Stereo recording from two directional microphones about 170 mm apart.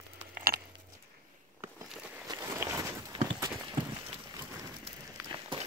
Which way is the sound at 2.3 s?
20° right (ahead or behind).